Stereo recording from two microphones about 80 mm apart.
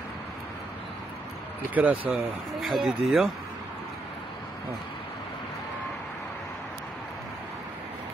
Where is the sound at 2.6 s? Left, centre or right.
Centre.